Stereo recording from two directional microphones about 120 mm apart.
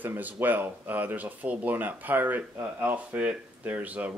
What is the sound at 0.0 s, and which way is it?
Speech, 15° right (ahead or behind).